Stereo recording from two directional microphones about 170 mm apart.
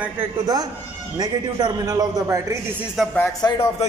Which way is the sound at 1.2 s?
25° right (ahead or behind).